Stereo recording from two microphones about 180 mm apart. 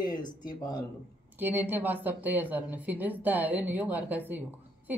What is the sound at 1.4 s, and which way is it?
A woman's voice, 10° right (ahead or behind).